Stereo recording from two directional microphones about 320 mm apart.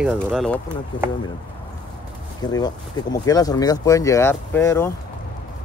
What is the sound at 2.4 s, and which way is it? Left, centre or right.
Speech, centre.